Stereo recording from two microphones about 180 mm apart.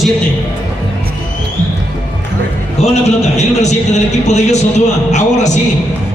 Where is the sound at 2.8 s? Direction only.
40° left (ahead or behind).